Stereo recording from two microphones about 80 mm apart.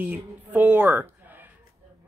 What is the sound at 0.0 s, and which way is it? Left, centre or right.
Speech, right.